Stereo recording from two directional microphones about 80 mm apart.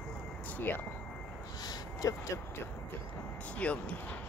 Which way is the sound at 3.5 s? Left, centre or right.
Centre.